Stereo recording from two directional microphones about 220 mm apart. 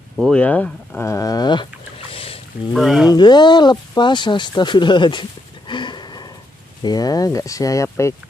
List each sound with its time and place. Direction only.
0.2 s speech: 5° left (ahead or behind)
2.1 s a sound: 25° left (ahead or behind)
2.7 s speech: centre (ahead or behind)
3.1 s speech: 20° left (ahead or behind)
5.7 s a sound: 20° left (ahead or behind)
6.8 s speech: 15° left (ahead or behind)